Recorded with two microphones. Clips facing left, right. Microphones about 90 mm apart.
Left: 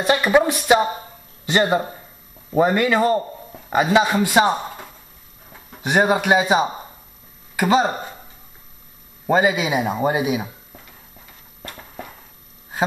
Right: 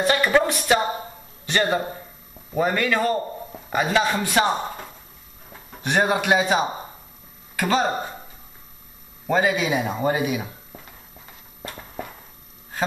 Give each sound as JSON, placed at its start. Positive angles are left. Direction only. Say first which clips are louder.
{"t": 0.0, "sound": "a man's voice", "louder": "left 3 dB", "side_deg": 15}
{"t": 9.3, "sound": "speech", "louder": "left 3 dB", "side_deg": 10}